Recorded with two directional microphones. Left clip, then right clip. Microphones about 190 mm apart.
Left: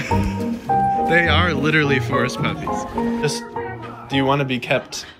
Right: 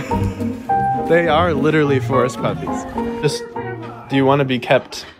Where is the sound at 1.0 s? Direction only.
15° right (ahead or behind).